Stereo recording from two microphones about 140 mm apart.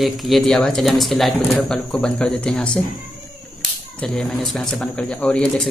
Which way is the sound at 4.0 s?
5° left (ahead or behind).